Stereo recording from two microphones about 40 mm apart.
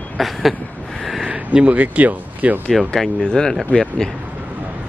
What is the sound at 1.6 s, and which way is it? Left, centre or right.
Speech, right.